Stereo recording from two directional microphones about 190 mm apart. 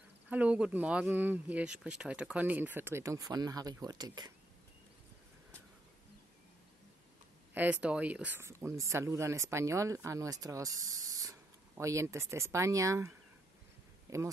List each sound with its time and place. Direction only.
0.3 s speech: 5° right (ahead or behind)
7.5 s speech: 10° right (ahead or behind)